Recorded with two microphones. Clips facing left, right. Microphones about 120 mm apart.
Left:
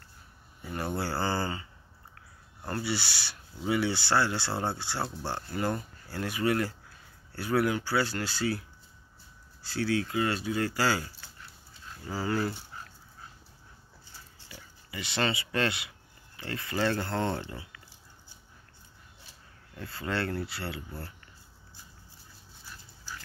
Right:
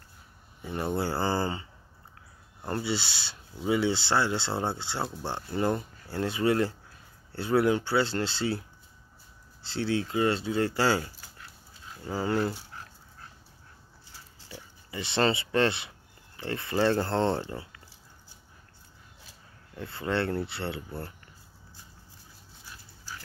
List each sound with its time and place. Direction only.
0.7 s speech: 20° right (ahead or behind)
12.1 s speech: 20° right (ahead or behind)
14.5 s speech: 25° right (ahead or behind)
19.8 s speech: 20° right (ahead or behind)